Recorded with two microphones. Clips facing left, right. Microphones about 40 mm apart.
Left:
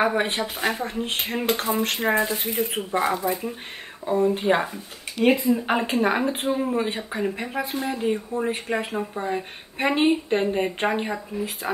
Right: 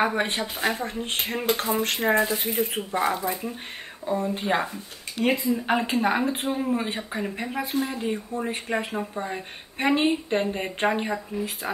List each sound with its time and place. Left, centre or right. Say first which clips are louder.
0.0 s a woman's voice: left 2 dB; centre